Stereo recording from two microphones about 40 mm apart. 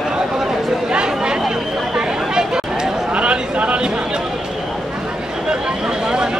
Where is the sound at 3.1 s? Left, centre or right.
Right.